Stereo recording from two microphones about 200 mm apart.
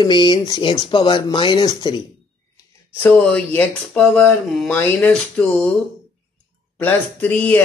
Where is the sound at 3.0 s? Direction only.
5° left (ahead or behind).